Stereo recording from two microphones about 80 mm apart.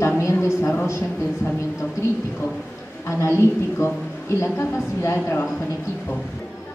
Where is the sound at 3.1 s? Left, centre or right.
Left.